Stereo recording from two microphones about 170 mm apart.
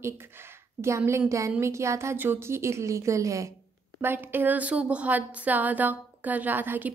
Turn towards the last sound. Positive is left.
turn(degrees=-10)  # may be behind; listen again after turning